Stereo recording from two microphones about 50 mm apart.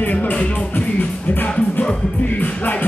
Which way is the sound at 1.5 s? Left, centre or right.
Left.